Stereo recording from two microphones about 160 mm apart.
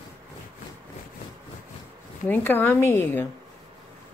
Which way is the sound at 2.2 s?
10° left (ahead or behind).